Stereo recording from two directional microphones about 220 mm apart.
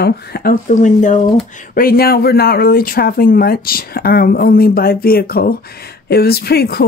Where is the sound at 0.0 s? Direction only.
45° left (ahead or behind).